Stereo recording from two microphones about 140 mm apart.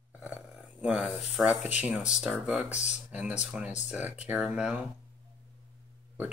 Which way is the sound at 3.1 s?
10° right (ahead or behind).